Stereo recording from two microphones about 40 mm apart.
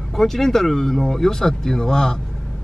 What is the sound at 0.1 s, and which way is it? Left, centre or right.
A man's voice, centre.